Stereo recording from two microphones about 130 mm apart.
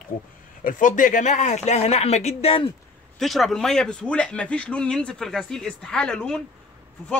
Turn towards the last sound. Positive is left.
turn(degrees=5)  # may be behind; listen again after turning